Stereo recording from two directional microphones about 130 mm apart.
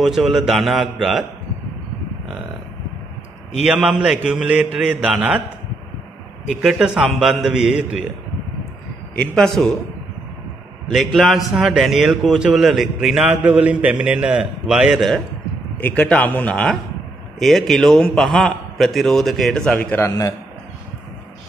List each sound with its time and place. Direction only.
0.0 s a man's voice: centre (ahead or behind)
3.6 s a man's voice: 10° right (ahead or behind)
6.5 s a man's voice: 5° right (ahead or behind)
9.1 s a man's voice: 5° left (ahead or behind)
10.9 s a man's voice: centre (ahead or behind); by 20.3 s 25° left (ahead or behind)